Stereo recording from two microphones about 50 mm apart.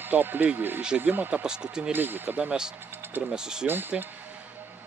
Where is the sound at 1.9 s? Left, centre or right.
Right.